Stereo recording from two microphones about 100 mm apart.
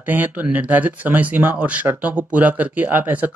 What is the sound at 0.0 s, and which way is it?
Speech, 15° right (ahead or behind).